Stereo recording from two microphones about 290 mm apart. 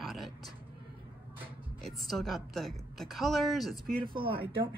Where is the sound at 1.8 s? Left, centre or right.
Centre.